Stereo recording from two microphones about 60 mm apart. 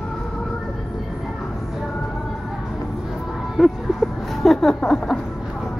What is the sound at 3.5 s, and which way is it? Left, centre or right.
Music, centre.